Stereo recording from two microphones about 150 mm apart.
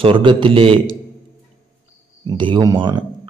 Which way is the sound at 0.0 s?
35° right (ahead or behind).